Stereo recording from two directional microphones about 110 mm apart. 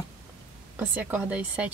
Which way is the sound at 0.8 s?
15° right (ahead or behind).